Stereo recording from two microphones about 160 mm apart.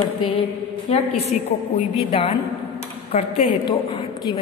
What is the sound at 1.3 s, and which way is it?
Speech, 50° left (ahead or behind).